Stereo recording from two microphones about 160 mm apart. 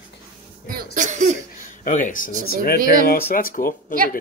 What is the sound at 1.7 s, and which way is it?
Speech, 55° left (ahead or behind).